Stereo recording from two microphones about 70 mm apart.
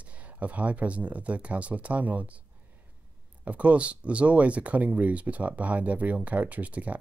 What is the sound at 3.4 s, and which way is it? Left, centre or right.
Speech, centre.